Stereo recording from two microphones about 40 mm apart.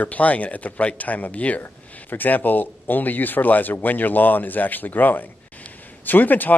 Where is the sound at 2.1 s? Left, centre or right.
Left.